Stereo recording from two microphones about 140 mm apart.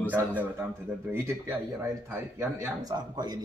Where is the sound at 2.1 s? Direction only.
20° right (ahead or behind).